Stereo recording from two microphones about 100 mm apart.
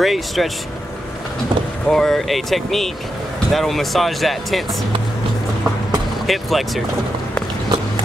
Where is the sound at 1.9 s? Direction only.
5° left (ahead or behind).